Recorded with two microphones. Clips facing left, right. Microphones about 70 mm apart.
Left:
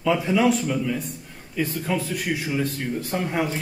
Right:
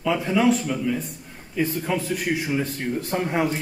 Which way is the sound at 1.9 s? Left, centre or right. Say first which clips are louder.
Left 3 dB; centre.